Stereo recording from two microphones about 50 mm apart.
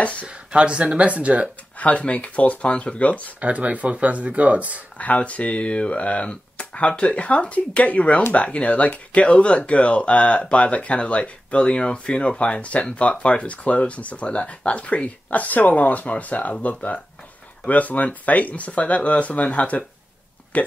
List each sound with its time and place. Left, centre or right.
0.5 s speech: right
1.8 s speech: left
3.3 s speech: right
4.9 s speech: left